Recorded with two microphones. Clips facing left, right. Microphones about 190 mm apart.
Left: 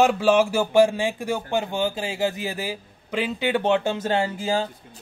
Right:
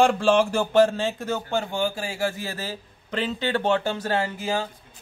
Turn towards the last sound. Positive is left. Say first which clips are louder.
# left 2 dB
turn(degrees=25)  # may be behind; listen again after turning